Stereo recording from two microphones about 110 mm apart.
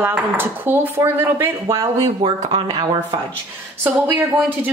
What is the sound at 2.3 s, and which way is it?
Speech, 40° right (ahead or behind).